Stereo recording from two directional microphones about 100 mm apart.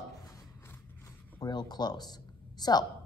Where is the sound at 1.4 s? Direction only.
45° left (ahead or behind).